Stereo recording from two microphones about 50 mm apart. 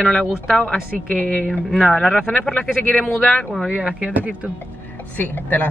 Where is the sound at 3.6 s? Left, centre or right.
Right.